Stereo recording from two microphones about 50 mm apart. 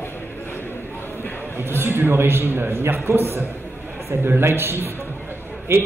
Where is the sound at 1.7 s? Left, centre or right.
Right.